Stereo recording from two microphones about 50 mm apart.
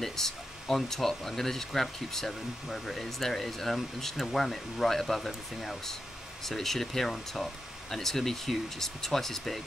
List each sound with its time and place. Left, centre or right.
0.0 s speech: centre